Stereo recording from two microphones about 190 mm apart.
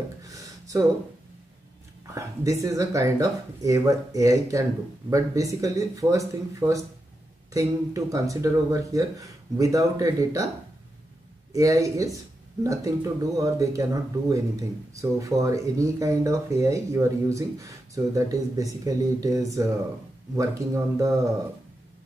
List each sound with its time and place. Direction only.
0.2 s a sound: 15° right (ahead or behind)
2.6 s speech: 15° right (ahead or behind)
11.5 s speech: 15° right (ahead or behind)